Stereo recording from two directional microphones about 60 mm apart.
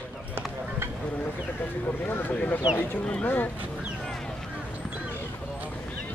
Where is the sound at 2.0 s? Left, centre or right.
Left.